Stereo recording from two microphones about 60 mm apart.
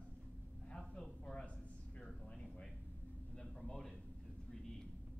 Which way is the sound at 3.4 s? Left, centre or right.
Centre.